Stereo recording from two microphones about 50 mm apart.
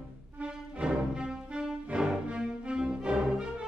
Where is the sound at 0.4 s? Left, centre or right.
Centre.